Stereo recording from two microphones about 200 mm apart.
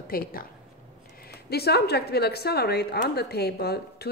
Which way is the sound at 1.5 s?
55° left (ahead or behind).